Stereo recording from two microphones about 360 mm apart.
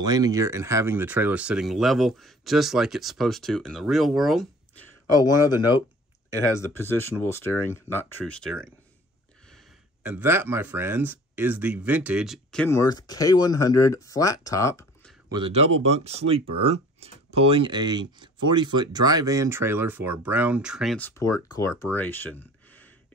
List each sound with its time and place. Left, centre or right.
0.0 s speech: centre
5.2 s speech: centre
15.3 s speech: centre